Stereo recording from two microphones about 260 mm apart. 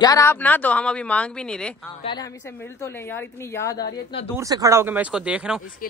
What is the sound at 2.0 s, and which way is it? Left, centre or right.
A woman's voice, centre.